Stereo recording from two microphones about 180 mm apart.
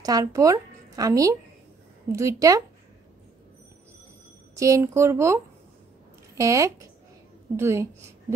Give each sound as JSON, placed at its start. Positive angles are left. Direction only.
{"t": 0.0, "sound": "speech", "side_deg": -20}
{"t": 4.6, "sound": "speech", "side_deg": -15}